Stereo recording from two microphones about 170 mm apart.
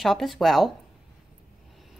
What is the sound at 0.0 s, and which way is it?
Speech, centre (ahead or behind).